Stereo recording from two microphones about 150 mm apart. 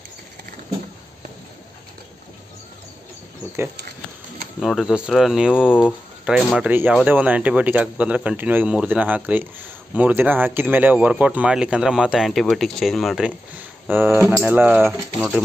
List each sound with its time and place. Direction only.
4.6 s speech: centre (ahead or behind)
5.7 s speech: 10° left (ahead or behind)
6.2 s speech: 5° right (ahead or behind)
13.8 s speech: 15° right (ahead or behind)